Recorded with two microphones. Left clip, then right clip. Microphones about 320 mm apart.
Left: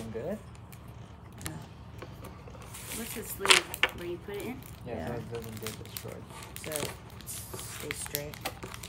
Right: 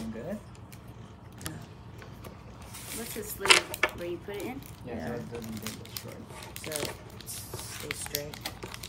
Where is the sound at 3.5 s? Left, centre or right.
Centre.